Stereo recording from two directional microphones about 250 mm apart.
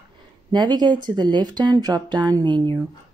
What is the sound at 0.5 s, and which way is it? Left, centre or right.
Speech, centre.